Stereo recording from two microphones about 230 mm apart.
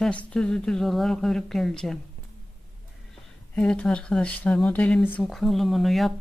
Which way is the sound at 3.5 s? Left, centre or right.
Centre.